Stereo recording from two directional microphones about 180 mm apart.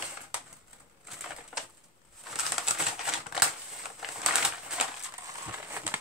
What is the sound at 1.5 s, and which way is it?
Bird, 5° right (ahead or behind).